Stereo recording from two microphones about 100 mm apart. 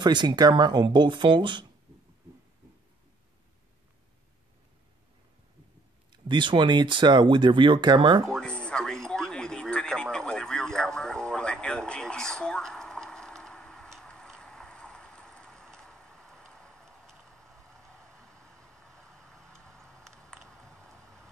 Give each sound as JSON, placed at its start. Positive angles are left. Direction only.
{"t": 0.0, "sound": "speech", "side_deg": -45}
{"t": 6.2, "sound": "speech", "side_deg": -50}
{"t": 8.3, "sound": "a sound", "side_deg": 10}